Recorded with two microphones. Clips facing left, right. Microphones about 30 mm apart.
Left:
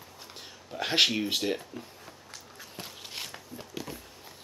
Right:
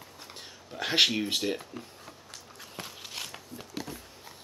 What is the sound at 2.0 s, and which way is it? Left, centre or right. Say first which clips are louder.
Walk: even; right.